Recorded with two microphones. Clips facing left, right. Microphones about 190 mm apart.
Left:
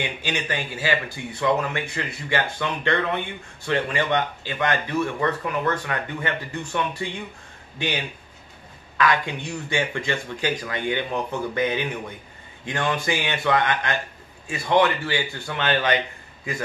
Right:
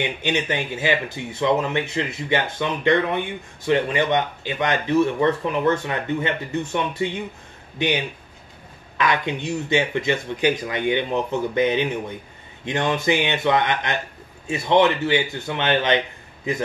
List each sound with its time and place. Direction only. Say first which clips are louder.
0.0 s speech: right 5 dB; 20° right (ahead or behind)
8.9 s speech: even; 20° right (ahead or behind)